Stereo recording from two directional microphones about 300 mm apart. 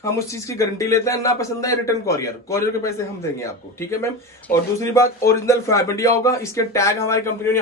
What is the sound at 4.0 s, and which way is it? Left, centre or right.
A man's voice, centre.